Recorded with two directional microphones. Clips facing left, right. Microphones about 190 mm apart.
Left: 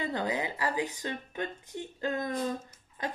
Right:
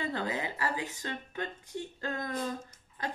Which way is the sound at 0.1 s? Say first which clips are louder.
Left 2 dB; 15° left (ahead or behind).